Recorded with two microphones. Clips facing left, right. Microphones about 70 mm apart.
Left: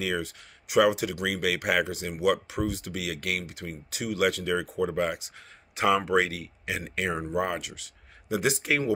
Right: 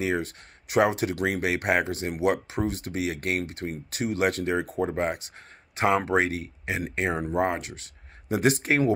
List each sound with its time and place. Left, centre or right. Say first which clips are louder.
0.7 s speech: even; right